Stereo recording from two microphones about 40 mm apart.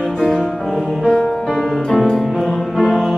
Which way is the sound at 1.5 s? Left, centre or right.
Centre.